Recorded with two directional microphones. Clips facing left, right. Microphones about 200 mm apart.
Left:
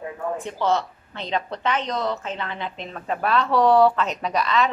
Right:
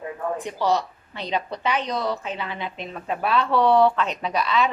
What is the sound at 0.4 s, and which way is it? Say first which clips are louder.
A woman's voice: even; 15° right (ahead or behind).